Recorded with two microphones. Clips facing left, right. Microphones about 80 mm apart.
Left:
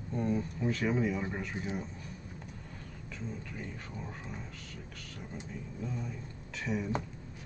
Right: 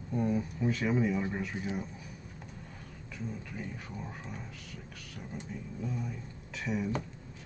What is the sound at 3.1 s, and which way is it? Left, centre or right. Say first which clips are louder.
Speech: right 2 dB; centre.